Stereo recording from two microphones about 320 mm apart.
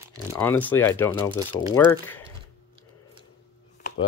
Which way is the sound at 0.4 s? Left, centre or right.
Centre.